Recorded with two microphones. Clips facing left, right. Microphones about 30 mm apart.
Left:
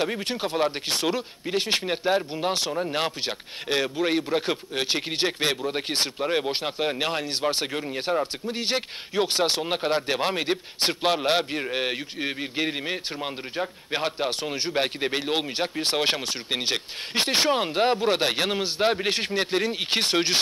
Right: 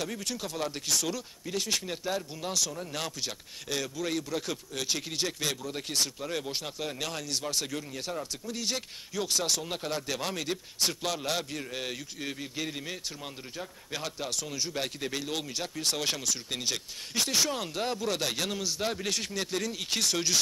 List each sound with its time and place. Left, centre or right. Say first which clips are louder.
0.0 s speech: left 8 dB; left